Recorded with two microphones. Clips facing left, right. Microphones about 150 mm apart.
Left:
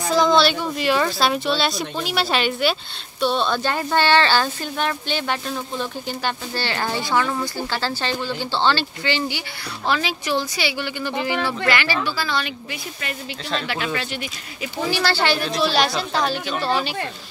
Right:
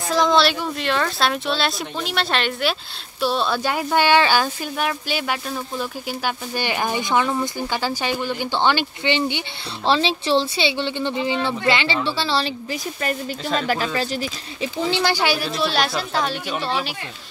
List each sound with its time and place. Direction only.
0.1 s speech: centre (ahead or behind); by 12.5 s 30° right (ahead or behind)
13.6 s speech: 40° right (ahead or behind)
14.9 s speech: 20° right (ahead or behind); by 16.9 s centre (ahead or behind)